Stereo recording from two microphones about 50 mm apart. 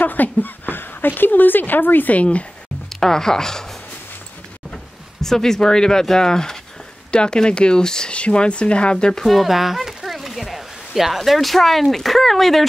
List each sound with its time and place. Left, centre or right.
0.0 s speech: left
3.0 s speech: centre
5.2 s speech: centre
8.9 s a sound: centre
11.0 s speech: centre